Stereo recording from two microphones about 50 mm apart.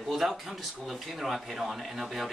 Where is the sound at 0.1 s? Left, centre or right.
Centre.